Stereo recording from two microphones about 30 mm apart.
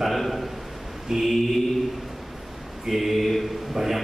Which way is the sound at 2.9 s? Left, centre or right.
Centre.